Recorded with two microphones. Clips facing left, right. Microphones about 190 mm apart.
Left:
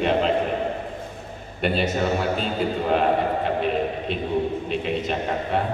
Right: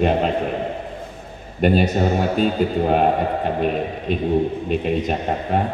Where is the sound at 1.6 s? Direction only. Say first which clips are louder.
Right 5 dB; 45° right (ahead or behind).